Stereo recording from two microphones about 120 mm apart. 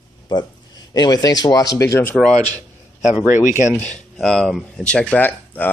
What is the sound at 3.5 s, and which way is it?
Speech, 90° left.